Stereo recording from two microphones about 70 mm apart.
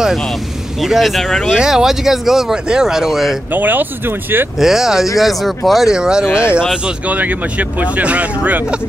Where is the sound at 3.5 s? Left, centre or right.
Right.